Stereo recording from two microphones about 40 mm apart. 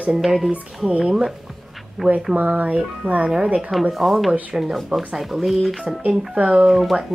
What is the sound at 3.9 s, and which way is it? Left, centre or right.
Speech, centre.